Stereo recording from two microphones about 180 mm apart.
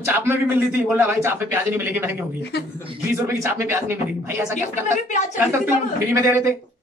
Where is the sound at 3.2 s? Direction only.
15° right (ahead or behind).